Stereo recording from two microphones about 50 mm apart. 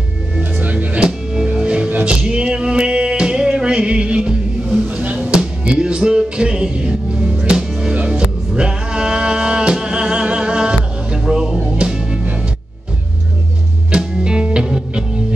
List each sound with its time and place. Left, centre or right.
0.4 s music: right
0.9 s music: centre
13.9 s music: centre